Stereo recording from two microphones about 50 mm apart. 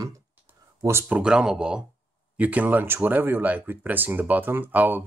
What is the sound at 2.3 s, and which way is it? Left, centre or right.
Speech, right.